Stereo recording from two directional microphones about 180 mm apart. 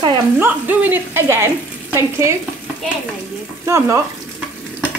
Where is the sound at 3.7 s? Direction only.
15° right (ahead or behind).